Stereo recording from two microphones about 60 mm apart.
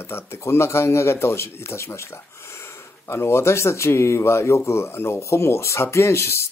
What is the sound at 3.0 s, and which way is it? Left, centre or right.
Speech, left.